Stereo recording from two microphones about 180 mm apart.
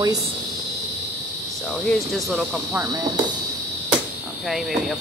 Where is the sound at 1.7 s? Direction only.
Centre (ahead or behind).